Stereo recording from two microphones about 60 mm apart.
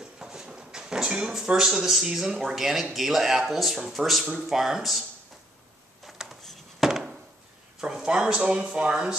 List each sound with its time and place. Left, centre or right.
0.2 s speech: centre
6.0 s a sound: centre
6.9 s chop: centre
7.8 s speech: centre